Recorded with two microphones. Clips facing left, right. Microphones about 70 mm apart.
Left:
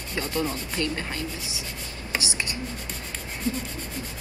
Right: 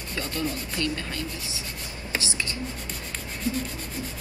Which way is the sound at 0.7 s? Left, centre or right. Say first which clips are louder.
Left 2 dB; left.